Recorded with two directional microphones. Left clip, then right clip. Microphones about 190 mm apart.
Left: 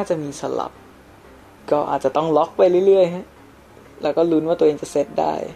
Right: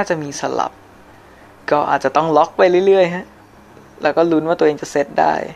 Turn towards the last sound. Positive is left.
turn(degrees=-25)  # may be behind; listen again after turning